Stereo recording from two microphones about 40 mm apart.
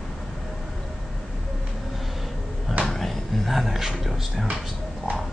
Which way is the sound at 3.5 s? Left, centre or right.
Centre.